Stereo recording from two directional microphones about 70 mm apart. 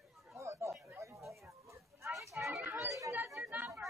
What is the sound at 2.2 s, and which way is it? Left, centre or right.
Chatter, right.